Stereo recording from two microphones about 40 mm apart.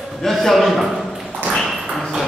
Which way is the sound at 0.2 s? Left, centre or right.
Centre.